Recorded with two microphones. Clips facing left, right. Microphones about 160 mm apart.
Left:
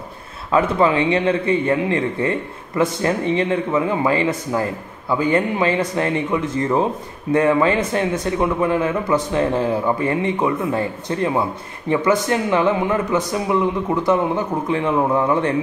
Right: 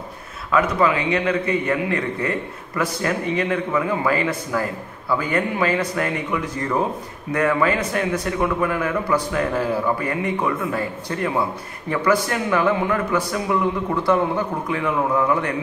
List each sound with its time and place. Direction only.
0.5 s a man's voice: 30° left (ahead or behind)